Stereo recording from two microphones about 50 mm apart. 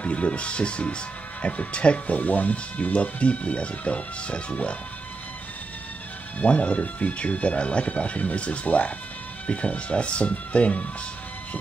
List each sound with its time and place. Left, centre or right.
0.0 s speech: left
6.4 s speech: left